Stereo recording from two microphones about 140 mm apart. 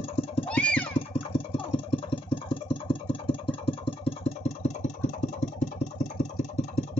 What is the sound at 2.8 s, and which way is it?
Engine, 40° left (ahead or behind).